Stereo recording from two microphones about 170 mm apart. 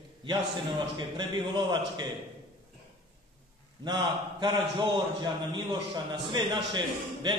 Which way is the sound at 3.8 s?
25° right (ahead or behind).